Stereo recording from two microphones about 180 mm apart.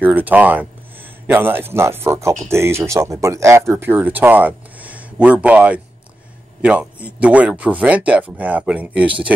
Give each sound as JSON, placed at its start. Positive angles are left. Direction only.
{"t": 0.0, "sound": "speech", "side_deg": -10}